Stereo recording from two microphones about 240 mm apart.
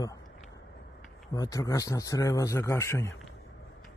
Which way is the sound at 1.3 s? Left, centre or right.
Centre.